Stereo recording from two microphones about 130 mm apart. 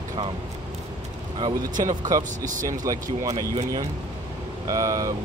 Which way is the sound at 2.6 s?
25° right (ahead or behind).